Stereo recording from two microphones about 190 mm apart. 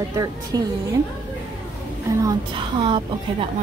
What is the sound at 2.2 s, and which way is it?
Speech, 20° right (ahead or behind).